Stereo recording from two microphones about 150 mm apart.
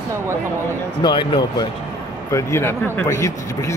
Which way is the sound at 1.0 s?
30° left (ahead or behind).